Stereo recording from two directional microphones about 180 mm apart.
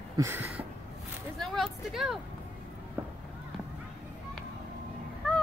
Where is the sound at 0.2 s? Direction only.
10° right (ahead or behind).